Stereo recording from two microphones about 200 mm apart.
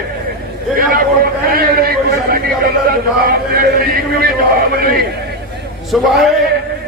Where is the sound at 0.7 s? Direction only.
45° right (ahead or behind).